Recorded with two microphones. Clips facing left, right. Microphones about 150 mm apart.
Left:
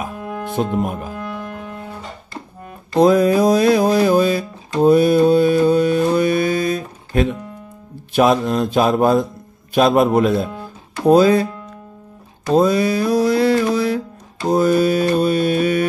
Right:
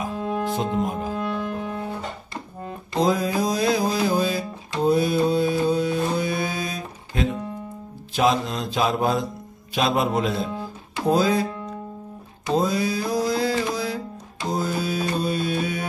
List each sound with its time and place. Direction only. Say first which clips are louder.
0.1 s music: right 2 dB; 20° right (ahead or behind)
0.6 s speech: left 4 dB; 60° left (ahead or behind)
1.5 s music: right 2 dB; 20° right (ahead or behind)
3.0 s music: left 9 dB; 60° left (ahead or behind)
8.1 s mantra: left 6 dB; 55° left (ahead or behind)
11.1 s speech: left 8 dB; 65° left (ahead or behind)
12.5 s music: left 8 dB; 65° left (ahead or behind)
14.5 s mantra: left 11 dB; 65° left (ahead or behind)